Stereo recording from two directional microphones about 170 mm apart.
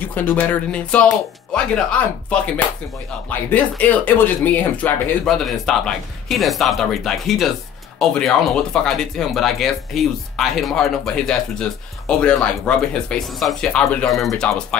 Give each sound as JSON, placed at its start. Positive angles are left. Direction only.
{"t": 0.1, "sound": "speech", "side_deg": 10}